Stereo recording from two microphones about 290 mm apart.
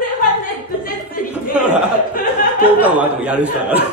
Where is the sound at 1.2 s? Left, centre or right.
Left.